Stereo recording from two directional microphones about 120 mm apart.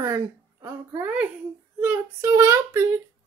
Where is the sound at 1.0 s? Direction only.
15° right (ahead or behind).